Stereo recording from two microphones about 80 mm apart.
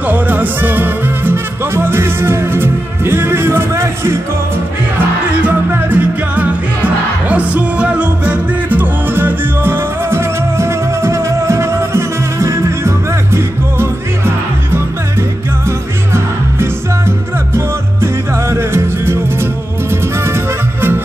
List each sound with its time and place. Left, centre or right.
0.0 s music: right
5.4 s music: right